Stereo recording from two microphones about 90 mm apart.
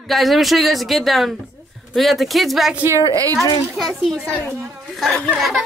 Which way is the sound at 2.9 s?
40° right (ahead or behind).